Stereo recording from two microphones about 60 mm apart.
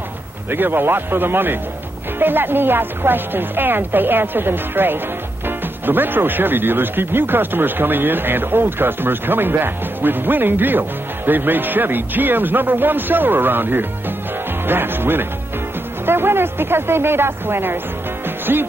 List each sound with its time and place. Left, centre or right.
0.5 s speech: right